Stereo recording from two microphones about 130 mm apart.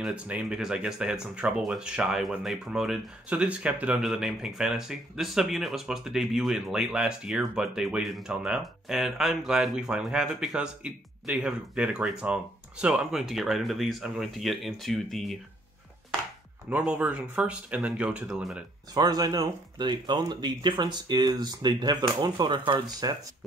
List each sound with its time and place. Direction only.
0.0 s speech: 10° right (ahead or behind)
16.6 s speech: 10° right (ahead or behind)
18.9 s speech: 30° right (ahead or behind)